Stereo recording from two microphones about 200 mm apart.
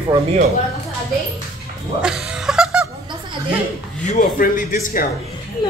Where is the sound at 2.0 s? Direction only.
5° right (ahead or behind).